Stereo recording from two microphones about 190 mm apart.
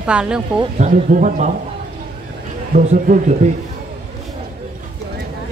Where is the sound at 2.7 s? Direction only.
40° right (ahead or behind).